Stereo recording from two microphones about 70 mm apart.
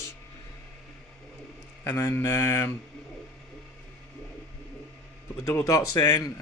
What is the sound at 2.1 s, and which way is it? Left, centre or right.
Mantra, left.